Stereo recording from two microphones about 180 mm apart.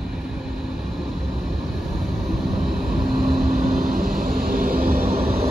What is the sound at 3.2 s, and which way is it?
Vehicle, 55° right (ahead or behind).